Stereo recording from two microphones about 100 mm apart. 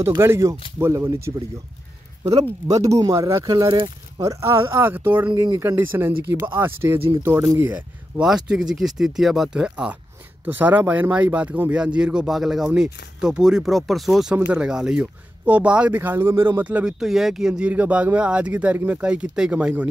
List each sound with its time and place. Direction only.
0.0 s speech: 25° right (ahead or behind)
2.7 s speech: 35° right (ahead or behind)
4.2 s speech: 30° right (ahead or behind)
7.7 s speech: 5° right (ahead or behind)
10.4 s speech: 20° right (ahead or behind); by 14.3 s centre (ahead or behind)
14.3 s speech: 10° right (ahead or behind)